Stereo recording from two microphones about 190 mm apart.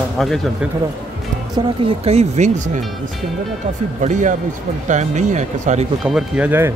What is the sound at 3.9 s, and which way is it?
Speech, 40° right (ahead or behind).